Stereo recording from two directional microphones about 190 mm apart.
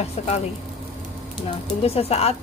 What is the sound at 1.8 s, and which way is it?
Speech, 30° left (ahead or behind).